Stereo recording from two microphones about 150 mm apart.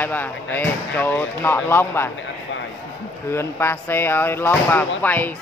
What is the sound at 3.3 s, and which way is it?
A man's voice, 15° left (ahead or behind).